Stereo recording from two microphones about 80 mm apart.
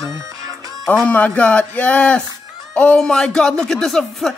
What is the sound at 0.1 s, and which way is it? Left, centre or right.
Music, right.